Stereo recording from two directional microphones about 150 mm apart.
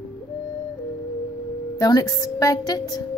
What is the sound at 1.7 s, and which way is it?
A woman's voice, 25° left (ahead or behind).